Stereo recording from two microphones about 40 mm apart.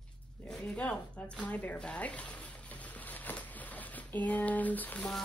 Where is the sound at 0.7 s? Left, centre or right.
Left.